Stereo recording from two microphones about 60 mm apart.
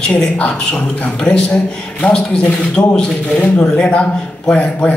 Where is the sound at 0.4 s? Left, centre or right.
Centre.